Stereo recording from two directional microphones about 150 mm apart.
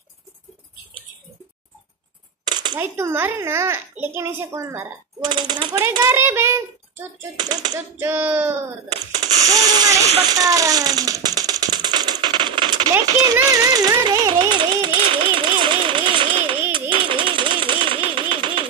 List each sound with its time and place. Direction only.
2.5 s camera: 30° right (ahead or behind)
2.8 s a child's voice: 15° right (ahead or behind)
5.2 s a child's voice: 30° right (ahead or behind)
7.3 s speech: 30° right (ahead or behind)
8.0 s a child's voice: 15° right (ahead or behind)
9.5 s a sound: 25° right (ahead or behind)
10.2 s music: 25° right (ahead or behind)
12.9 s a sound: 25° right (ahead or behind)